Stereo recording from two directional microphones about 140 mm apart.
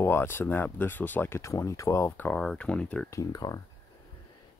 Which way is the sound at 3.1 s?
25° left (ahead or behind).